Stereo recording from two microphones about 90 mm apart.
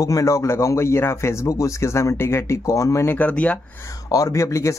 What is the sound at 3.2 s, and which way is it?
Speech, 15° left (ahead or behind).